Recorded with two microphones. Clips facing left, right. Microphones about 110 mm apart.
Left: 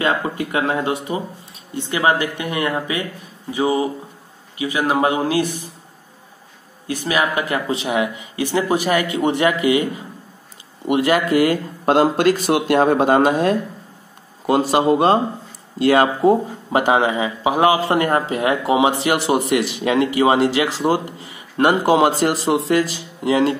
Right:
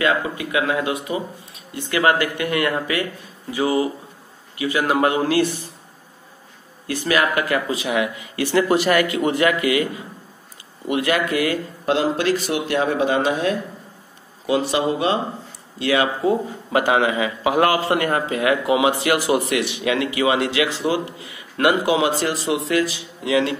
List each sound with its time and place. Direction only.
0.0 s a man's voice: 35° left (ahead or behind); by 5.7 s 15° left (ahead or behind)
6.9 s speech: 15° left (ahead or behind)
8.2 s a man's voice: 15° left (ahead or behind)
9.2 s speech: 25° left (ahead or behind)
10.9 s speech: 35° left (ahead or behind)
11.8 s speech: 50° left (ahead or behind)
16.7 s speech: 30° left (ahead or behind)
17.4 s a man's voice: 15° left (ahead or behind)
17.9 s speech: 30° left (ahead or behind)
21.5 s speech: 30° left (ahead or behind)